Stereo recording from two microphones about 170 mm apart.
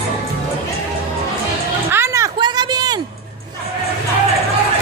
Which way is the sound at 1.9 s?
15° right (ahead or behind).